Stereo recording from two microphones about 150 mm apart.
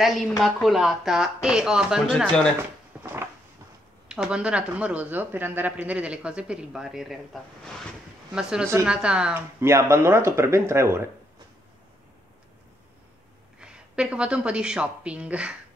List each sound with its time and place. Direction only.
0.0 s speech: centre (ahead or behind)
3.0 s a sound: 15° right (ahead or behind)
4.1 s speech: 5° right (ahead or behind)
13.6 s speech: 5° right (ahead or behind)